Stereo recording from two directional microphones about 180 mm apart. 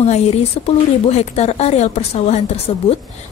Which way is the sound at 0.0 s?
35° left (ahead or behind).